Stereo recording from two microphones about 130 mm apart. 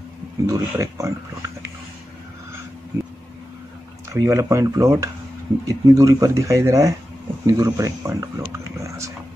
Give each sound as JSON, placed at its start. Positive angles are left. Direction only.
{"t": 0.5, "sound": "speech", "side_deg": -25}
{"t": 2.9, "sound": "vehicle", "side_deg": -15}
{"t": 4.1, "sound": "speech", "side_deg": -25}
{"t": 8.4, "sound": "a sound", "side_deg": -20}